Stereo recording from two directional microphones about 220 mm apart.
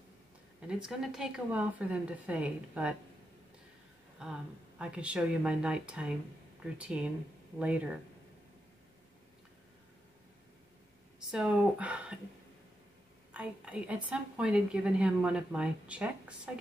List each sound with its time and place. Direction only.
0.6 s a woman's voice: 5° right (ahead or behind)
4.2 s a woman's voice: 5° right (ahead or behind)
11.3 s a woman's voice: 5° right (ahead or behind)
13.3 s a woman's voice: 5° right (ahead or behind)